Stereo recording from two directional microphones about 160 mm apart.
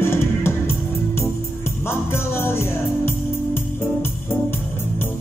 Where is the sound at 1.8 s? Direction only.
15° left (ahead or behind).